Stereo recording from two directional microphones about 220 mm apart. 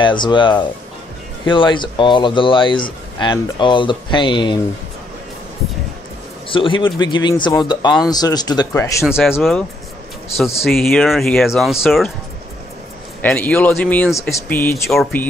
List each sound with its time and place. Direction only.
0.0 s speech: 20° left (ahead or behind)
6.5 s speech: 20° left (ahead or behind)
9.0 s speech: centre (ahead or behind)
13.2 s speech: 5° left (ahead or behind)